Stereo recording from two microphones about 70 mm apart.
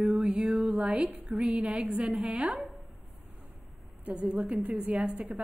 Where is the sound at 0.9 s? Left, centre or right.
Centre.